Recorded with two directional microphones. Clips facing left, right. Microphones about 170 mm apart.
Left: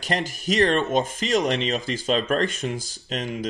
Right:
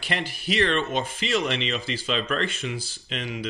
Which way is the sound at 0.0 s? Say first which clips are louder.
Left 4 dB; 45° left (ahead or behind).